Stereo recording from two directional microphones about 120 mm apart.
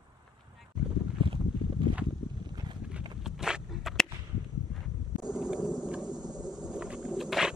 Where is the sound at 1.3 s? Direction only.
45° right (ahead or behind).